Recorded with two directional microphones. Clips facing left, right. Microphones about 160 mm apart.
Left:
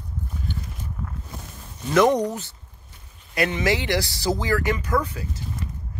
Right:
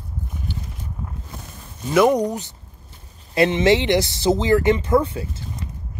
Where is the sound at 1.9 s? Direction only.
10° right (ahead or behind).